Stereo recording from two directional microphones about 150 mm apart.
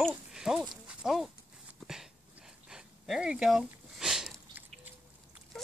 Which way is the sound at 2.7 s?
5° right (ahead or behind).